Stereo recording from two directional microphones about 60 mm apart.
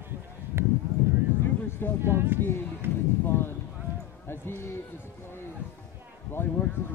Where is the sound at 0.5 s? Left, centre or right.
Right.